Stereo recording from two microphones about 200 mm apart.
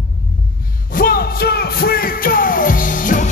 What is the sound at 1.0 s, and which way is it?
Music, 45° left (ahead or behind).